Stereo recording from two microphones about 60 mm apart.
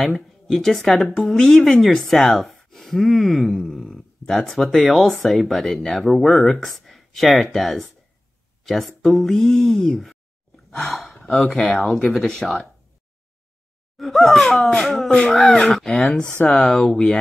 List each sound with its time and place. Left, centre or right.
0.5 s speech: centre
11.0 s gasp: centre
11.3 s speech: centre
13.9 s speech: centre